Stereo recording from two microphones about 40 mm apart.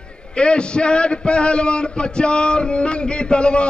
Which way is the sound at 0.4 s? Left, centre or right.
Left.